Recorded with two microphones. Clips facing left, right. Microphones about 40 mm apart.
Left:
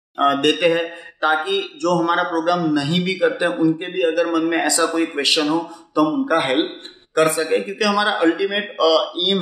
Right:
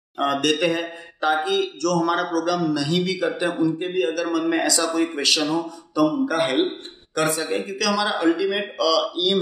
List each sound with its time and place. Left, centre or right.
0.2 s a man's voice: left